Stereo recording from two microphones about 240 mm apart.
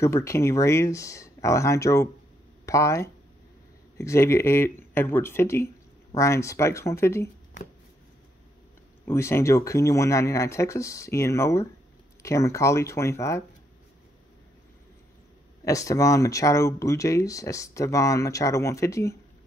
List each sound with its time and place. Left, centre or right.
0.0 s speech: centre
9.0 s speech: centre
15.6 s speech: centre